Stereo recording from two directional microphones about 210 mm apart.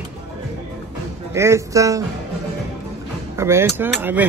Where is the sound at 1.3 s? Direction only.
15° right (ahead or behind).